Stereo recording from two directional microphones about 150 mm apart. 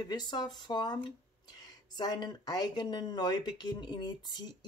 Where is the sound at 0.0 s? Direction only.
30° left (ahead or behind).